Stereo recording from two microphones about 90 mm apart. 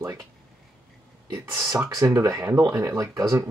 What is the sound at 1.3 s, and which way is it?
Speech, 35° right (ahead or behind).